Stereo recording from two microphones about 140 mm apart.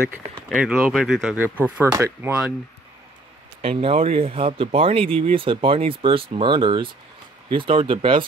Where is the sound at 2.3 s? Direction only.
10° right (ahead or behind).